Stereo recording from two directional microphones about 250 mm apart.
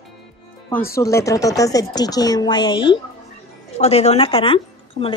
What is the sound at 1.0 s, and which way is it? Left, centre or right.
A woman's voice, centre.